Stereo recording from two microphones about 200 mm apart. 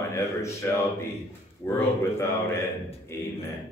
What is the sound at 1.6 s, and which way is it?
Speech, 10° left (ahead or behind).